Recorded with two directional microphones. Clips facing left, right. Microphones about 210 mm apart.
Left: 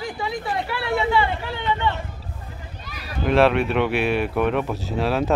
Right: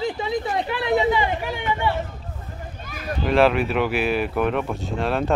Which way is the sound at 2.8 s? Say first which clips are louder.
Right 8 dB; 50° right (ahead or behind).